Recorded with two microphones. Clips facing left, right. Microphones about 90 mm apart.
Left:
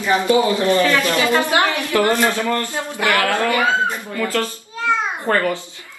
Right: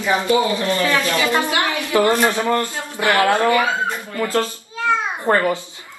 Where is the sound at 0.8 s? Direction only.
20° right (ahead or behind).